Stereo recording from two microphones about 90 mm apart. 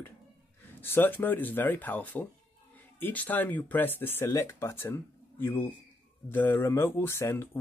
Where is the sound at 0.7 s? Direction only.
25° left (ahead or behind).